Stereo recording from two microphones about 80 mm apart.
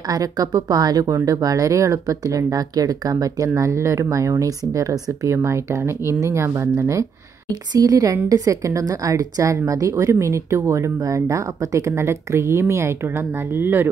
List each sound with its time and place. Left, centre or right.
0.1 s speech: right
5.3 s speech: right
7.7 s speech: right